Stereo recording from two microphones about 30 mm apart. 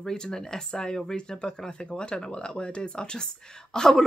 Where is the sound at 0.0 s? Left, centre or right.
Centre.